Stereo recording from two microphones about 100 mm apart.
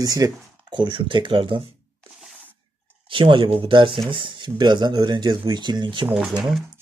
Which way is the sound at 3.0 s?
55° right (ahead or behind).